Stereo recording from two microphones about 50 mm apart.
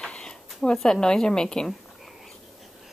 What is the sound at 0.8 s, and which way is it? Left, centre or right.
Speech, centre.